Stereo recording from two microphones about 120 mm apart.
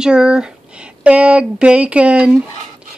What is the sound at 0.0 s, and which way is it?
Speech, 5° right (ahead or behind).